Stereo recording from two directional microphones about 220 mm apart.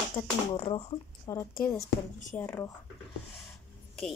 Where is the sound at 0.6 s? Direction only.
25° left (ahead or behind).